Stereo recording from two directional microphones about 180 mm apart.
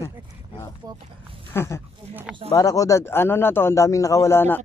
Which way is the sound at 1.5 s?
15° left (ahead or behind).